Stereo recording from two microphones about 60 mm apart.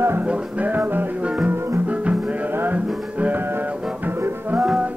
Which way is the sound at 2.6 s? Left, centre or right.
Right.